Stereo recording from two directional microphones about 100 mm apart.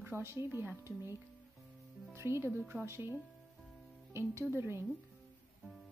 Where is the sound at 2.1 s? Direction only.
25° right (ahead or behind).